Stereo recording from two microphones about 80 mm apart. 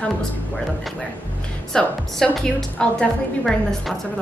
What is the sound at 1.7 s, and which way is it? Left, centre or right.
A woman's voice, centre.